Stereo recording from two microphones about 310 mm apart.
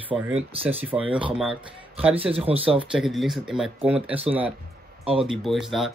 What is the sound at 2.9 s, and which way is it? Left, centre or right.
Speech, centre.